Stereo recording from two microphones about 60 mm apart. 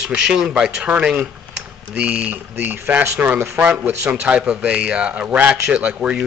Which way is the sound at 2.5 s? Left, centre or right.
Right.